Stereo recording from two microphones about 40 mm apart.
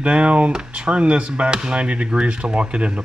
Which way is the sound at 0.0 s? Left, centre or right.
Right.